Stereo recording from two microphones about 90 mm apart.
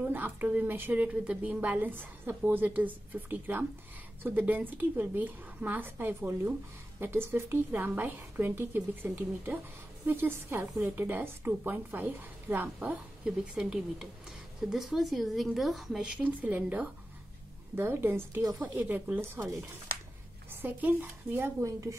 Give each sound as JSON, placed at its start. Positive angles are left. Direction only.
{"t": 0.0, "sound": "a woman's voice", "side_deg": -20}
{"t": 13.2, "sound": "a woman's voice", "side_deg": -10}
{"t": 16.2, "sound": "a woman's voice", "side_deg": -20}
{"t": 20.6, "sound": "a woman's voice", "side_deg": -20}